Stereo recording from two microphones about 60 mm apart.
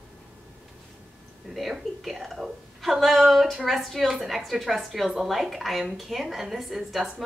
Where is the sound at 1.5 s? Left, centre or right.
Centre.